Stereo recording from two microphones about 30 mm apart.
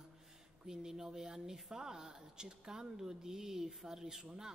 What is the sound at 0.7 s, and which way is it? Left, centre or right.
Speech, right.